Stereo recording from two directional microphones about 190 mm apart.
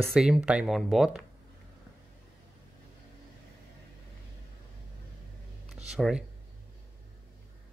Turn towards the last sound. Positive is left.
turn(degrees=-5)  # may be behind; listen again after turning